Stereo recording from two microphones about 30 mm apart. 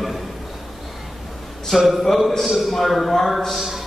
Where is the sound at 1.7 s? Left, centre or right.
Centre.